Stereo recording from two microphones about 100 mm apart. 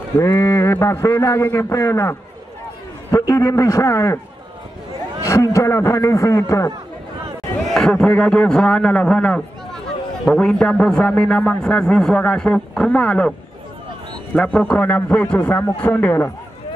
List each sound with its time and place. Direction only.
0.2 s a man's voice: 30° left (ahead or behind)
5.2 s a man's voice: 30° left (ahead or behind)
7.7 s a man's voice: 5° left (ahead or behind)
14.3 s a man's voice: 15° left (ahead or behind)